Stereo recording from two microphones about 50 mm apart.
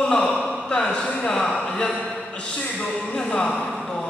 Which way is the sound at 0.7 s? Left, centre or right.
Centre.